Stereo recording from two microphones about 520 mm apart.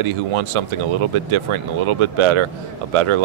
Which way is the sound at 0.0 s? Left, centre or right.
Right.